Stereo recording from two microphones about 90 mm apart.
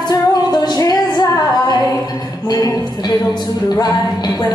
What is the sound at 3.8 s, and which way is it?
Music, 50° left (ahead or behind).